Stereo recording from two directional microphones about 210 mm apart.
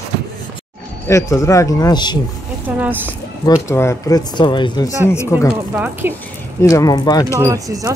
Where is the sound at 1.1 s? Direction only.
15° left (ahead or behind).